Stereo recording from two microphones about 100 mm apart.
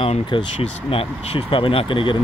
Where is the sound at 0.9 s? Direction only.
70° left (ahead or behind).